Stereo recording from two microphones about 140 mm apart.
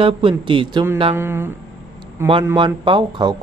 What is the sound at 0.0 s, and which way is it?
Speech, 40° right (ahead or behind).